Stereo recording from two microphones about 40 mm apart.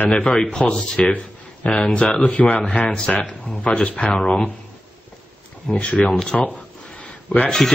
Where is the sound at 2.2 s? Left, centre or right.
Left.